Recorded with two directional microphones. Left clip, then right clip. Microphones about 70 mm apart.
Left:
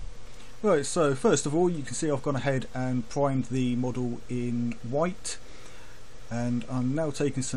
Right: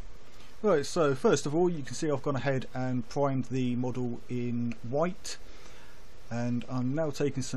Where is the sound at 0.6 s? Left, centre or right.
Right.